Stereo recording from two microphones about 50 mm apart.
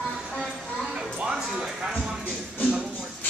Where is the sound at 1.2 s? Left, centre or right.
Centre.